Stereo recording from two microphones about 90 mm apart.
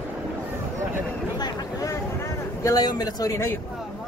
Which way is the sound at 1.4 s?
40° left (ahead or behind).